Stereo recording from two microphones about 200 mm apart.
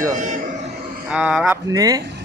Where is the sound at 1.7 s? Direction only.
20° right (ahead or behind).